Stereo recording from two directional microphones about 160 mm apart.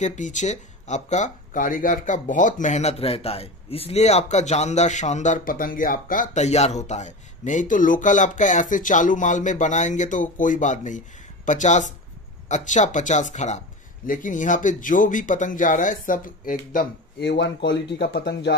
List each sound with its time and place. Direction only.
0.0 s speech: 50° left (ahead or behind)
17.2 s speech: 90° left